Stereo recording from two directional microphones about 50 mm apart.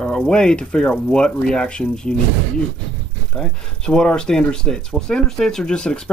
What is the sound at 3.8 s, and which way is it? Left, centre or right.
Speech, centre.